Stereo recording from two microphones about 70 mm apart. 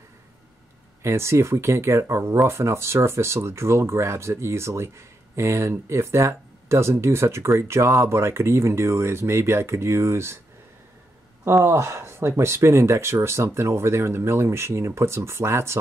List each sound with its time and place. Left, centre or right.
1.0 s speech: right
11.4 s speech: right